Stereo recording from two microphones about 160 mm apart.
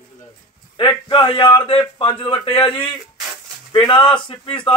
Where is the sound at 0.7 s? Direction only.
30° left (ahead or behind).